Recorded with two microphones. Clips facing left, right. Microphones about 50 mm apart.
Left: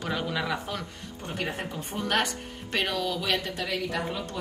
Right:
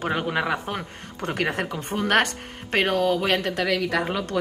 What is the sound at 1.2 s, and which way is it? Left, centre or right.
Speech, right.